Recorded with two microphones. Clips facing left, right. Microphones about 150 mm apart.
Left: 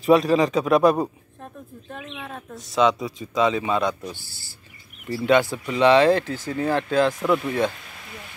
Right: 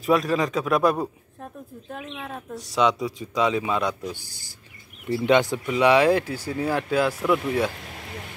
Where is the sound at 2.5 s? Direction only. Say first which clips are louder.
Left 2 dB; 15° right (ahead or behind).